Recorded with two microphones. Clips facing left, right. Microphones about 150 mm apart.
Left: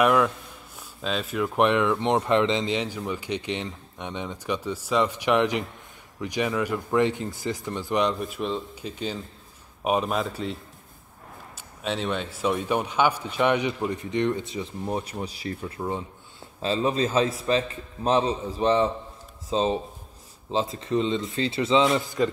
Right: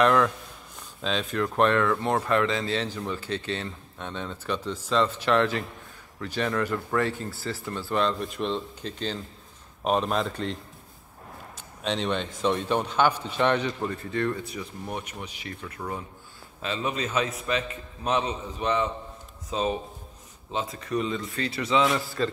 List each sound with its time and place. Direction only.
0.0 s a sound: 10° left (ahead or behind)
1.0 s speech: 5° left (ahead or behind)
8.2 s dishes: 5° left (ahead or behind)
9.8 s a man's voice: 5° left (ahead or behind)